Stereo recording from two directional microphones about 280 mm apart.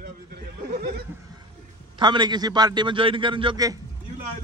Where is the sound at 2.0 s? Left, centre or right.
Centre.